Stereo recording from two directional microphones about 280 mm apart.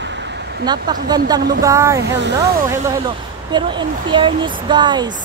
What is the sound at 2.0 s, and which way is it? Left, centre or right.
Speech, right.